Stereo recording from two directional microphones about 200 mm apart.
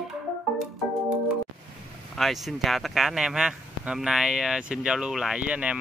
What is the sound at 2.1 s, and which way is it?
Speech, centre (ahead or behind).